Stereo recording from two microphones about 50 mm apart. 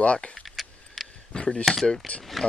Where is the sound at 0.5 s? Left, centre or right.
Centre.